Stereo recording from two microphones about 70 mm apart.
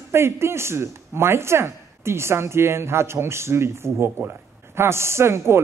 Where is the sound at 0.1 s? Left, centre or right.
Right.